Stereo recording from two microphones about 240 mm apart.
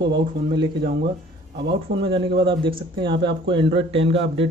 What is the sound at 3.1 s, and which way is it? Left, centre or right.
Speech, right.